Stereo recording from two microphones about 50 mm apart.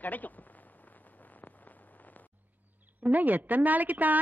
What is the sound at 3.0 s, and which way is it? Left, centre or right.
A woman's voice, right.